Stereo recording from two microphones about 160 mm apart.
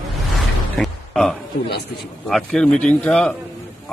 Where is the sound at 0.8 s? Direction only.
5° left (ahead or behind).